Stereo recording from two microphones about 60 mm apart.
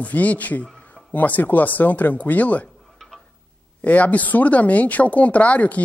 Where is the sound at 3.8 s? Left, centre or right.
Left.